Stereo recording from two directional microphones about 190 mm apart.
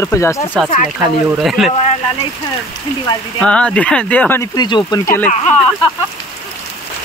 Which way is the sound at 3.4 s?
5° left (ahead or behind).